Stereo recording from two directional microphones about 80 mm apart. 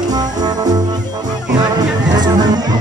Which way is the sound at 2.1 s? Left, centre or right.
Right.